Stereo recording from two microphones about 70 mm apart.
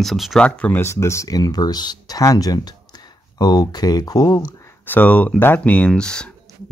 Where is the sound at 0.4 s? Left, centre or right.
Centre.